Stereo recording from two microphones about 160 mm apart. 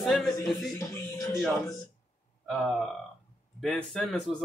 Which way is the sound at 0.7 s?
20° left (ahead or behind).